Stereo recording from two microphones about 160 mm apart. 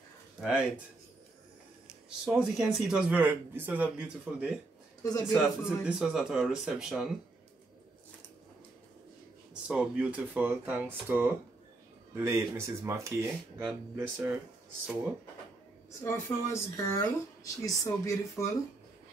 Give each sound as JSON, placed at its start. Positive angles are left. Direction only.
{"t": 0.4, "sound": "speech", "side_deg": -5}
{"t": 1.9, "sound": "speech", "side_deg": -5}
{"t": 9.5, "sound": "speech", "side_deg": -5}
{"t": 16.0, "sound": "speech", "side_deg": 15}